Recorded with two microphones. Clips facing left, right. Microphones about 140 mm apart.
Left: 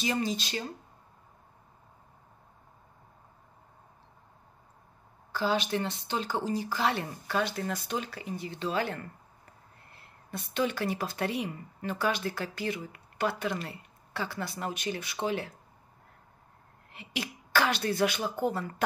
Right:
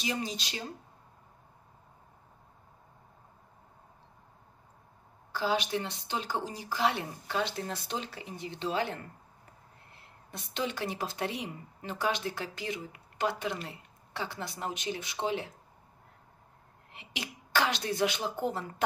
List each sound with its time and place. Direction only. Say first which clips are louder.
0.0 s speech: left 4 dB; 15° right (ahead or behind)
5.3 s speech: left 1 dB; 15° right (ahead or behind)
10.3 s speech: left 4 dB; 20° right (ahead or behind)
16.9 s speech: left 5 dB; 20° right (ahead or behind)